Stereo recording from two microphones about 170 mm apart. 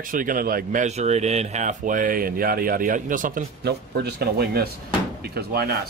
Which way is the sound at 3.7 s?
70° right (ahead or behind).